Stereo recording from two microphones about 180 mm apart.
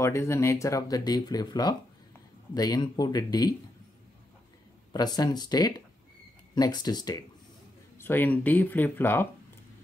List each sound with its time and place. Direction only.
0.0 s speech: 15° left (ahead or behind)
4.9 s speech: 20° left (ahead or behind)
8.0 s speech: 10° left (ahead or behind)